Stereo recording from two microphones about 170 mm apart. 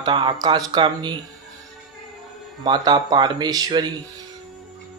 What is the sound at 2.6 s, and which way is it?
Speech, 25° right (ahead or behind).